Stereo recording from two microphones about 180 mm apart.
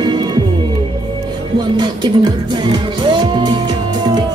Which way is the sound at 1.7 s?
25° right (ahead or behind).